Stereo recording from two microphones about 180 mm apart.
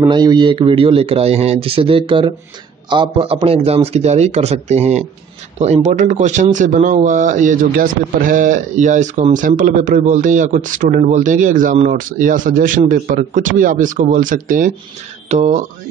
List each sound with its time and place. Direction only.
0.1 s a man's voice: 25° right (ahead or behind); by 15.6 s 40° right (ahead or behind)